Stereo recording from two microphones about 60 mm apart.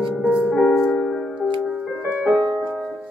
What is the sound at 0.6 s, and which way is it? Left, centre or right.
Music, left.